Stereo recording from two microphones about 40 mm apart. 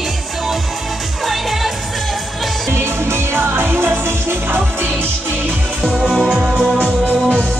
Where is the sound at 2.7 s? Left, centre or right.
Right.